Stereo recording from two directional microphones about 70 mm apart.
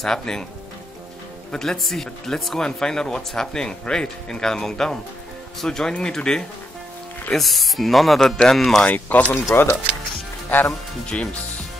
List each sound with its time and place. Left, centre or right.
0.0 s speech: centre
1.5 s speech: centre
8.8 s speech: left
9.3 s speech: left
11.1 s speech: centre